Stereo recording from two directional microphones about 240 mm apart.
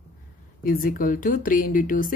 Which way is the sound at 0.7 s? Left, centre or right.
Left.